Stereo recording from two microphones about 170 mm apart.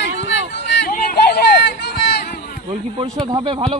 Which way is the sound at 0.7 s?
70° left (ahead or behind).